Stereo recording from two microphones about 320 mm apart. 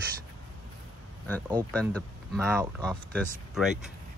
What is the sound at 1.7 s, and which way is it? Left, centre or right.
Speech, centre.